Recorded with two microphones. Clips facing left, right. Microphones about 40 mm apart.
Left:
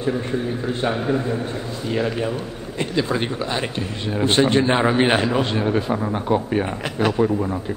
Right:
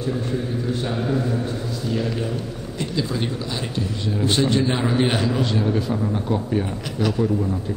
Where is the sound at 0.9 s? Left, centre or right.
Left.